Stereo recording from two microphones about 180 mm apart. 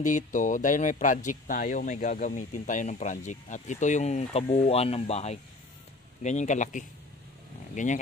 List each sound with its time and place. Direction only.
0.0 s a man's voice: 45° left (ahead or behind)